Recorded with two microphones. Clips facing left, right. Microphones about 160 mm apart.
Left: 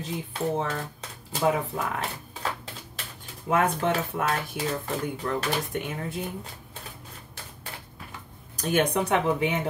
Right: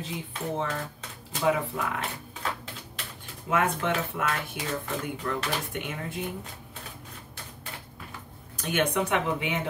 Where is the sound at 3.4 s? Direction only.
40° left (ahead or behind).